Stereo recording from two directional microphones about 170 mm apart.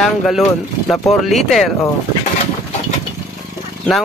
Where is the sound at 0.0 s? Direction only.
Centre (ahead or behind).